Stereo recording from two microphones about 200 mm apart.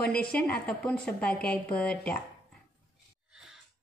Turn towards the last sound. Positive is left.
turn(degrees=-5)  # may be behind; listen again after turning